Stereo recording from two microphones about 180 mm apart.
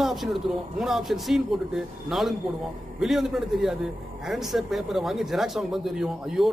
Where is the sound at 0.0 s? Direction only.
Centre (ahead or behind).